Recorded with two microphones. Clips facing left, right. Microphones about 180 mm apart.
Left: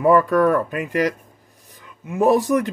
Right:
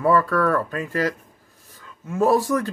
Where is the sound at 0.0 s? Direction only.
20° left (ahead or behind).